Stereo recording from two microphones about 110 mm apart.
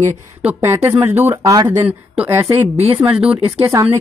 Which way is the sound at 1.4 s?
35° right (ahead or behind).